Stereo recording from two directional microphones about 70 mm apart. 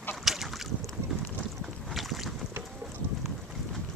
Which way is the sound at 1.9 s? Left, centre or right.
Centre.